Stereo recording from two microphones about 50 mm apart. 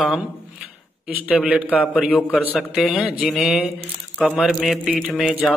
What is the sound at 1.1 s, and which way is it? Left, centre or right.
Speech, right.